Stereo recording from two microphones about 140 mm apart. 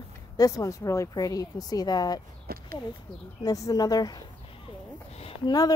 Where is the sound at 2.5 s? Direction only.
90° right.